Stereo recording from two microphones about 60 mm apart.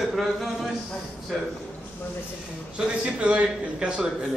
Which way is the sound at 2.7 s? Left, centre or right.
Centre.